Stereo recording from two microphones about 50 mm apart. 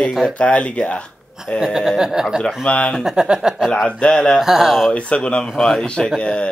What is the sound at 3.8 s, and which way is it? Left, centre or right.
Speech, centre.